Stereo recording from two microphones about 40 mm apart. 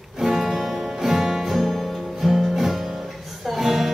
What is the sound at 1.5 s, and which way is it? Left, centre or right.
Music, centre.